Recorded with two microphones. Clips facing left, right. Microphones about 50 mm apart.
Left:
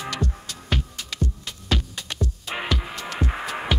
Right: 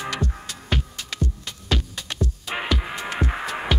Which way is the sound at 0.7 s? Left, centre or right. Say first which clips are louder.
Right 1 dB; centre.